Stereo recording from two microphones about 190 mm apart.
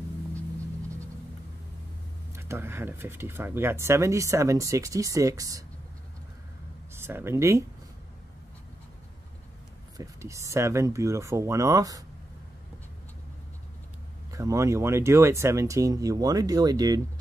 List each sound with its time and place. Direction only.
2.3 s speech: 15° right (ahead or behind)
6.9 s speech: 10° right (ahead or behind)
9.9 s speech: 15° right (ahead or behind)
14.3 s speech: 15° right (ahead or behind)